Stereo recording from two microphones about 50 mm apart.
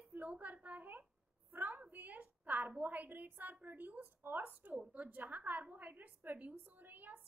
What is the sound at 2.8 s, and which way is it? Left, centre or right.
A woman's voice, right.